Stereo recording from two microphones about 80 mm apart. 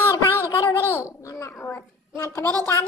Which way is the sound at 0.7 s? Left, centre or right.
Left.